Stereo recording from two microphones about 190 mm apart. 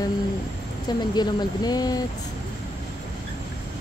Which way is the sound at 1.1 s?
20° left (ahead or behind).